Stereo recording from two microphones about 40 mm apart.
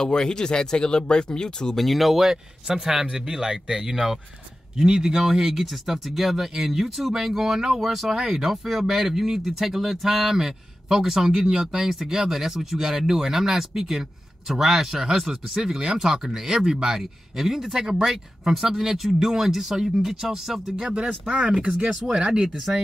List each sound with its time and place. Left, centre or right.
0.0 s speech: centre
1.8 s speech: centre
16.5 s speech: centre
20.9 s speech: right
22.2 s speech: centre